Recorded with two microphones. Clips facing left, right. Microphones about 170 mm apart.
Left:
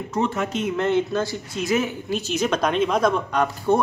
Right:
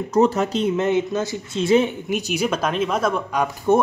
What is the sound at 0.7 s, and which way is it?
Speech, 15° right (ahead or behind).